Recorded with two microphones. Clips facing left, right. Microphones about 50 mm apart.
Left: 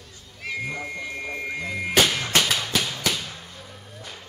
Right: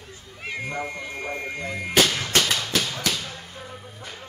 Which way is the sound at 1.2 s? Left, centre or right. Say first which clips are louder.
Right 4 dB; centre.